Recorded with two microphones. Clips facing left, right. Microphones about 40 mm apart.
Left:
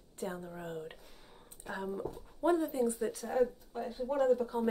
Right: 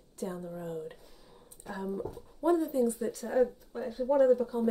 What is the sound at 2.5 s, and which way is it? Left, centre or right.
Speech, left.